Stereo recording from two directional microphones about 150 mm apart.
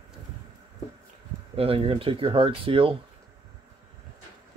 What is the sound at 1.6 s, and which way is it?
Speech, 40° right (ahead or behind).